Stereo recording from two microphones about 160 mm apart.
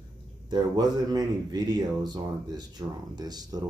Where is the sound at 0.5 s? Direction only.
25° right (ahead or behind).